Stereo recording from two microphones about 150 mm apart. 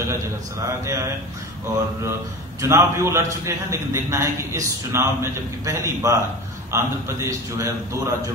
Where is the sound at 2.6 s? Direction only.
20° right (ahead or behind).